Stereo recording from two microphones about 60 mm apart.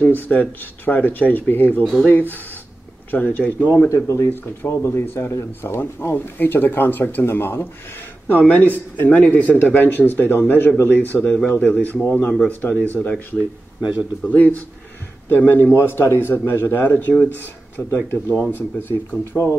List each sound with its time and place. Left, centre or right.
0.0 s speech: left
3.9 s speech: left
4.3 s speech: left
8.3 s speech: left
13.7 s speech: right
14.2 s speech: left
15.2 s speech: left